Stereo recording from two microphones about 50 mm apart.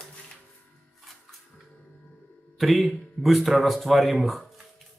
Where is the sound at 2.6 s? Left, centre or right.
Centre.